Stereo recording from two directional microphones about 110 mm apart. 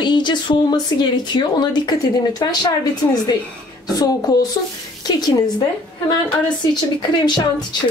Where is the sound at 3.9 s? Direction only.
35° left (ahead or behind).